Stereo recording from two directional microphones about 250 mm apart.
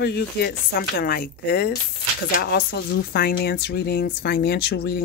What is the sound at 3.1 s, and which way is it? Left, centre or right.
Speech, left.